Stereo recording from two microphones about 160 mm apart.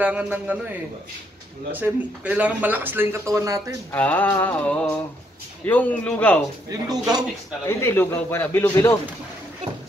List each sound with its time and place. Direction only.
0.0 s speech: 10° right (ahead or behind)
3.9 s a man's voice: 10° left (ahead or behind)
6.7 s speech: 25° right (ahead or behind)
7.6 s a man's voice: 15° left (ahead or behind)